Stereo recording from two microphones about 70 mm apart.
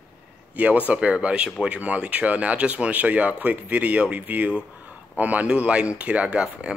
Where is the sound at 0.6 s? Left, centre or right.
Right.